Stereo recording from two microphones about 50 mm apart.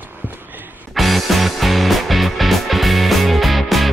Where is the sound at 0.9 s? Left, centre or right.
Centre.